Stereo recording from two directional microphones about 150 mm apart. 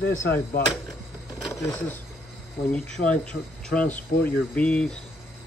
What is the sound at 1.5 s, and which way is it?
Speech, 15° left (ahead or behind).